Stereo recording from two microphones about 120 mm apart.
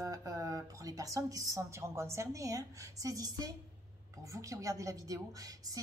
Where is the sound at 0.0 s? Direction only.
30° right (ahead or behind).